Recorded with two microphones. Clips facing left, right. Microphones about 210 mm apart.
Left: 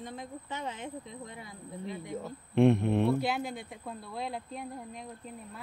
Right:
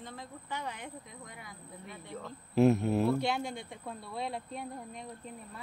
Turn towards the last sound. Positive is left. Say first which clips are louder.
# even
turn(degrees=0)  # may be behind; listen again after turning